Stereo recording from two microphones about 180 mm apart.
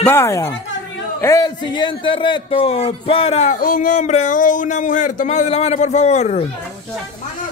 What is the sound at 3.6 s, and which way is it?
Speech, 50° left (ahead or behind).